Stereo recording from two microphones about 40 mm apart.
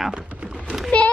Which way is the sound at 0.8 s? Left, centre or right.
Left.